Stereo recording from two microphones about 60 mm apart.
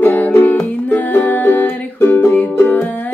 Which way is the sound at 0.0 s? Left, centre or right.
Left.